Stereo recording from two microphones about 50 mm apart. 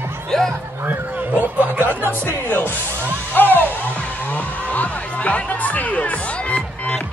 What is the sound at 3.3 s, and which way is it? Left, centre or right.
Music, left.